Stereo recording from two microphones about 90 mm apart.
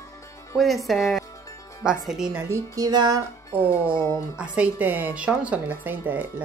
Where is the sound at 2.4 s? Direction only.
35° right (ahead or behind).